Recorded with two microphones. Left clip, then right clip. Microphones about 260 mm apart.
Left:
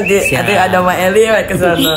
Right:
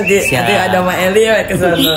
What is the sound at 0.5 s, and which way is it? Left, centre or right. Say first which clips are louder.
A man's voice: left 2 dB; left.